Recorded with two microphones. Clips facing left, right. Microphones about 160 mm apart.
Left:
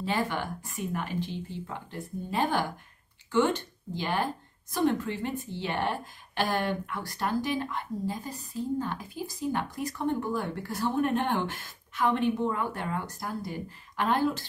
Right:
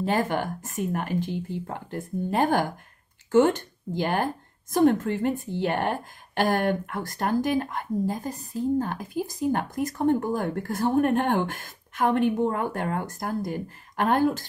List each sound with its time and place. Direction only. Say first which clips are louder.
0.0 s speech: right 5 dB; 45° right (ahead or behind)